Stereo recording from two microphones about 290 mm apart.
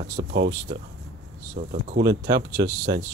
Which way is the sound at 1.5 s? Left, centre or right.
Right.